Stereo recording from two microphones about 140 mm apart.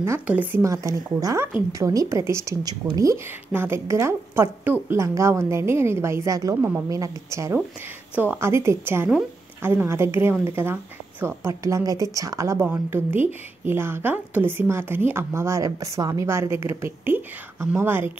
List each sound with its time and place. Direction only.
0.0 s a woman's voice: 15° right (ahead or behind)